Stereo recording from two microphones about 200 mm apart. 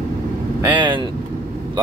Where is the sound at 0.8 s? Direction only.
25° right (ahead or behind).